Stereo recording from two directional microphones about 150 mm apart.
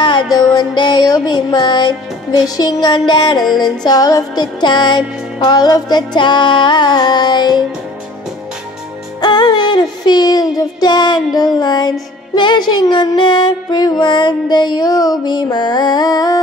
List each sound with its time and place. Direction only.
0.0 s music: 30° left (ahead or behind)
9.2 s music: 30° left (ahead or behind)